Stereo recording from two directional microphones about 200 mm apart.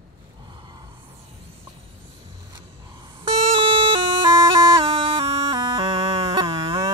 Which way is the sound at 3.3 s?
30° right (ahead or behind).